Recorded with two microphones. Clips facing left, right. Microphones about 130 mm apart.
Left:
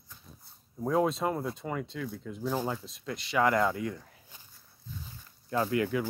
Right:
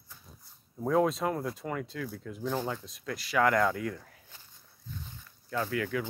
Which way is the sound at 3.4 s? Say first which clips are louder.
Even; 10° left (ahead or behind).